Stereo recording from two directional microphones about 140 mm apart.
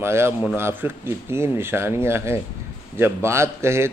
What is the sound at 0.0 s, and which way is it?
A man's voice, 15° right (ahead or behind).